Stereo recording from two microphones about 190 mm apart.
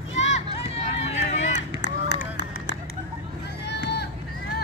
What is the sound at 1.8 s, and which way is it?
Run, 65° left (ahead or behind).